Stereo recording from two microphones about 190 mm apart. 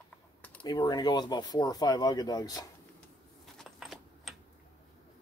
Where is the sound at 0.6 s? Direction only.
20° left (ahead or behind).